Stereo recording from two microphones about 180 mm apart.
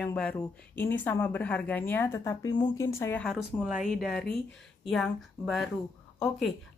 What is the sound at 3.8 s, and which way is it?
Speech, 55° left (ahead or behind).